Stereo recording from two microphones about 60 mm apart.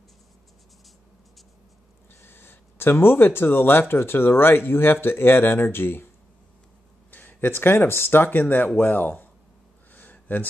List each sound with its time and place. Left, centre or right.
2.2 s speech: left
7.1 s speech: left
9.9 s a sound: left